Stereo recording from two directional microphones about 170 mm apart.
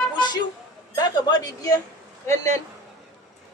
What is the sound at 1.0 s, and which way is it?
Speech, 25° left (ahead or behind).